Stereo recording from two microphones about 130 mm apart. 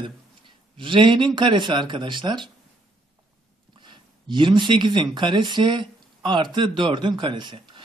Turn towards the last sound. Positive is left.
turn(degrees=-40)  # may be behind; listen again after turning